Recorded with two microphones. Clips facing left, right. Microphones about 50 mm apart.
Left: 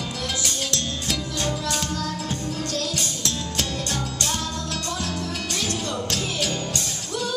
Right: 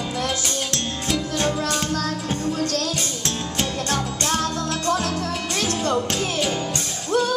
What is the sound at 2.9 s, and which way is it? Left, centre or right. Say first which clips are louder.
Music: right 1 dB; right.